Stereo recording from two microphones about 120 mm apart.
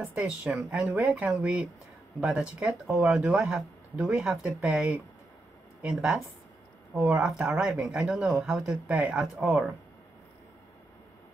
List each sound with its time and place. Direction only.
0.0 s speech: 5° right (ahead or behind)